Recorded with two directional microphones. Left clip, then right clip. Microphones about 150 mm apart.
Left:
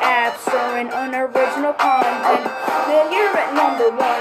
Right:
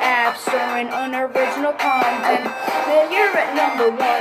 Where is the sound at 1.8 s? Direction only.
15° right (ahead or behind).